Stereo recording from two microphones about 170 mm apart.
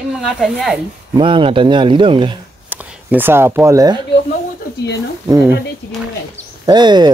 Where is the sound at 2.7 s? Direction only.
10° right (ahead or behind).